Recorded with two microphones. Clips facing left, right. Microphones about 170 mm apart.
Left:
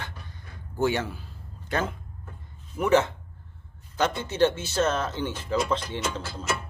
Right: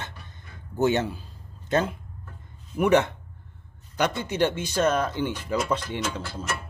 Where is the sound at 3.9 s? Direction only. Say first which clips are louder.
Right 1 dB; 15° right (ahead or behind).